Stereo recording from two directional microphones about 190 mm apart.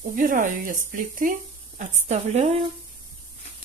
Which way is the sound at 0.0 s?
45° right (ahead or behind).